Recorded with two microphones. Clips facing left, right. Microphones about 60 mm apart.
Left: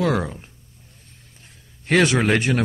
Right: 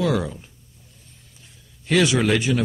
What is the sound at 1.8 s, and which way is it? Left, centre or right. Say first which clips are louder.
Speech: left 1 dB; left.